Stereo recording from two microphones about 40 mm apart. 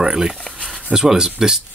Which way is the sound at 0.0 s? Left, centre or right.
Centre.